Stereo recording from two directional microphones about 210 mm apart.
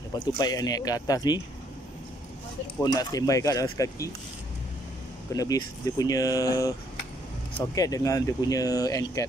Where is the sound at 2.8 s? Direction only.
20° left (ahead or behind).